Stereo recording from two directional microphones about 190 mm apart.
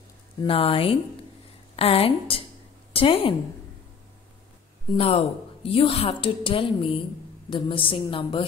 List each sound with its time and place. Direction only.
0.4 s a woman's voice: 30° left (ahead or behind)
4.9 s a woman's voice: 30° left (ahead or behind)